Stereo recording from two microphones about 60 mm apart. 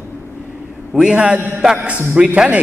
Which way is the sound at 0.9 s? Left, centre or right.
Centre.